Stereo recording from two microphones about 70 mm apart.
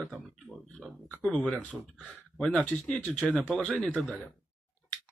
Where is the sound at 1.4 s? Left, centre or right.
Centre.